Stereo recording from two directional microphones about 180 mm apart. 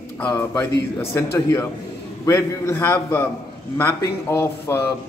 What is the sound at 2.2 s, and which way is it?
A man's voice, 15° left (ahead or behind).